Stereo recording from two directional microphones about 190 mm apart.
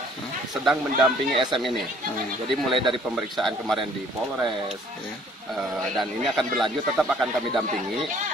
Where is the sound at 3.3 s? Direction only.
Centre (ahead or behind).